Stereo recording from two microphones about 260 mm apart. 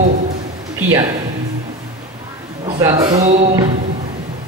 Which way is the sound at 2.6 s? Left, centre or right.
Centre.